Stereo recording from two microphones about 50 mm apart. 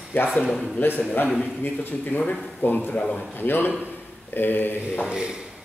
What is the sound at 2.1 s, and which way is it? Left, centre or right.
Mantra, left.